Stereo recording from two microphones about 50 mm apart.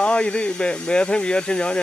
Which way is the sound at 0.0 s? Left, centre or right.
Left.